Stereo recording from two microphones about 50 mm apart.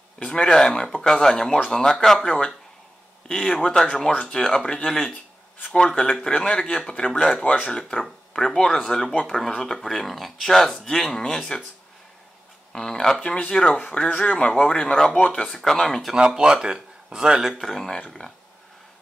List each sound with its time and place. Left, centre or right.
0.2 s speech: centre
2.2 s speech: left
3.3 s speech: centre
8.3 s speech: centre
9.3 s speech: left
9.8 s speech: centre
12.7 s speech: centre
13.2 s speech: left
16.3 s speech: centre
17.6 s speech: centre